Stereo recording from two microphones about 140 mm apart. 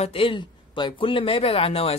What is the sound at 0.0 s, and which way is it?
A man's voice, 40° left (ahead or behind).